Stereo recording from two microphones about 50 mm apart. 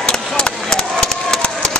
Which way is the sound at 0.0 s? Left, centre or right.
Centre.